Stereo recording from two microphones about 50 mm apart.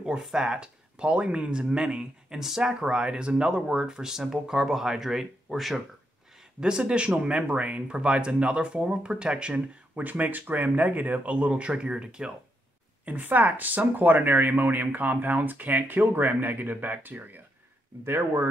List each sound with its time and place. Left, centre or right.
0.2 s speech: centre
6.6 s speech: centre
10.0 s speech: right; by 12.3 s centre
13.0 s speech: right
18.0 s speech: right